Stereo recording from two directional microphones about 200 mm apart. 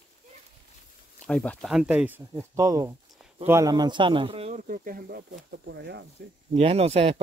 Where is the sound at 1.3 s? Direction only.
5° left (ahead or behind); by 6.1 s 60° right (ahead or behind).